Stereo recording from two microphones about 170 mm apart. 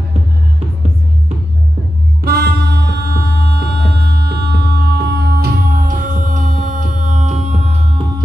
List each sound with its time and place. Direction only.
2.2 s music: 70° right (ahead or behind); by 7.8 s 40° right (ahead or behind)